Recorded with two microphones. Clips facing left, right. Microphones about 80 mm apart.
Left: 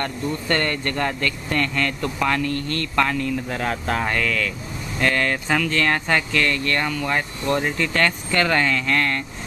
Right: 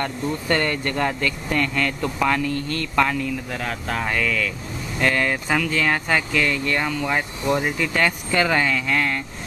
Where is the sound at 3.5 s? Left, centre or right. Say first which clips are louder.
Left 3 dB; centre.